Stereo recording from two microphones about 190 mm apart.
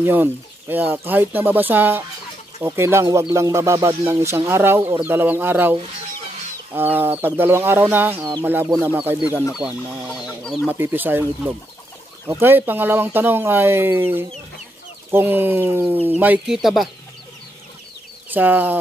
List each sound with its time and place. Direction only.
0.0 s speech: 10° right (ahead or behind)
4.7 s speech: 30° right (ahead or behind)
5.0 s speech: 10° right (ahead or behind)
10.7 s speech: 10° right (ahead or behind)
18.3 s speech: 10° right (ahead or behind)